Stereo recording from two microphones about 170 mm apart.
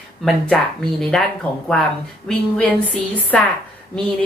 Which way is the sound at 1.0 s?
5° left (ahead or behind).